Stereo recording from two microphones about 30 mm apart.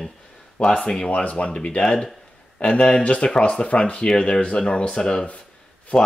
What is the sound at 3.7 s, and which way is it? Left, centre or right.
Speech, left.